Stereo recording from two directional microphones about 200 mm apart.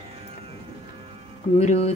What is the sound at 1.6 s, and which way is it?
Speech, 35° left (ahead or behind).